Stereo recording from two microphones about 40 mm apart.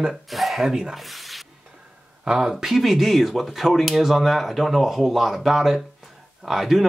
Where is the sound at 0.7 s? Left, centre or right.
Centre.